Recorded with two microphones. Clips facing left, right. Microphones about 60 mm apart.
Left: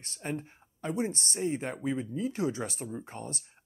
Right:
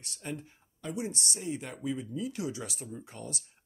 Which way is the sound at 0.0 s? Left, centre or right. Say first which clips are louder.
Left 4 dB; left.